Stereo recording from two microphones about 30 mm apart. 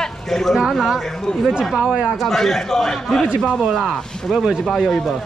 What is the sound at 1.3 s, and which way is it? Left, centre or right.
Speech, left.